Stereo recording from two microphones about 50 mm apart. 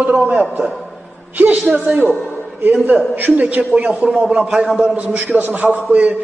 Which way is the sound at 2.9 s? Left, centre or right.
Right.